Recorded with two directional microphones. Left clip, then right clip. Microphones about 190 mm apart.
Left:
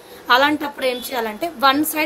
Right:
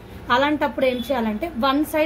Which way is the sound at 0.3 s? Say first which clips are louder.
Left 3 dB; 55° left (ahead or behind).